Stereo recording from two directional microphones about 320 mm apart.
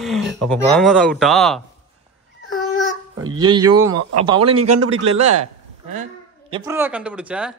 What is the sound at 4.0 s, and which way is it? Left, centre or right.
A man's voice, right.